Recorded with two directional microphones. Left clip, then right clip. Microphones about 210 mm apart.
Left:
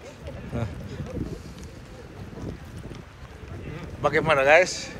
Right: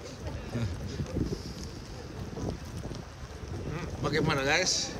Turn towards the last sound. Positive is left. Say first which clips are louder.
# left 9 dB
turn(degrees=-5)  # may be behind; listen again after turning